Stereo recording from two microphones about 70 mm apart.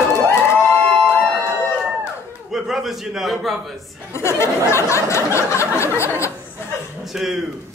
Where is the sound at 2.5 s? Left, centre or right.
Centre.